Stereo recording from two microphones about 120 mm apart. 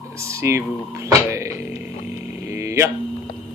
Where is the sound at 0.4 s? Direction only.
25° right (ahead or behind).